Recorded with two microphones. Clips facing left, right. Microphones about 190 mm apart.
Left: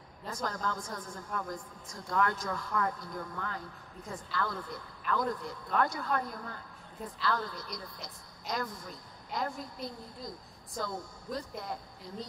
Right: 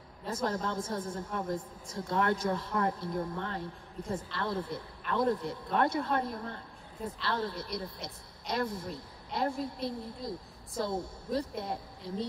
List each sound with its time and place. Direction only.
0.3 s speech: 25° right (ahead or behind)